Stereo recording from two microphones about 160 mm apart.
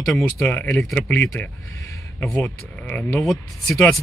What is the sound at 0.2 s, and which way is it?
Speech, 10° left (ahead or behind).